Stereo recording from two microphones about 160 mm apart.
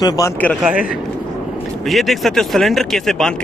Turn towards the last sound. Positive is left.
turn(degrees=5)  # may be behind; listen again after turning